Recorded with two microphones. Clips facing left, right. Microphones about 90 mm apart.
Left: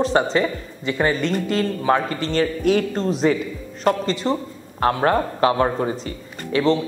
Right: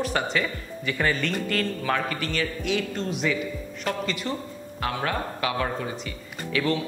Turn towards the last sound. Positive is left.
turn(degrees=30)  # may be behind; listen again after turning